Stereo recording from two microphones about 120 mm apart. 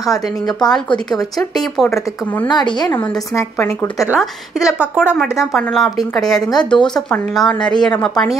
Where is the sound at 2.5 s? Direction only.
35° left (ahead or behind).